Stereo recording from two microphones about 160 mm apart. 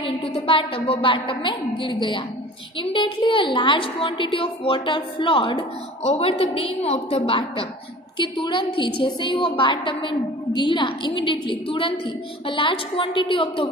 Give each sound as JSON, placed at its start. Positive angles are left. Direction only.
{"t": 0.0, "sound": "a woman's voice", "side_deg": 35}